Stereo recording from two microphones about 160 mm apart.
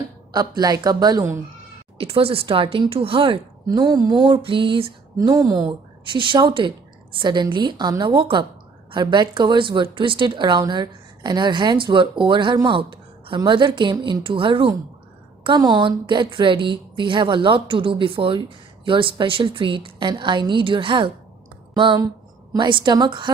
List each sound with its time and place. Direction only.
0.3 s speech: 25° right (ahead or behind)
2.0 s speech: 35° right (ahead or behind)
5.3 s a woman's voice: 20° right (ahead or behind)